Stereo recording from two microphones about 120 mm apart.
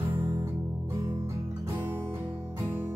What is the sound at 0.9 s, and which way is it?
Music, 40° right (ahead or behind).